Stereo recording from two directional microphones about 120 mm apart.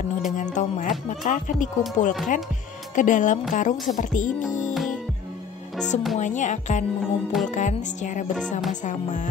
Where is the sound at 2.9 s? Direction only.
90° left.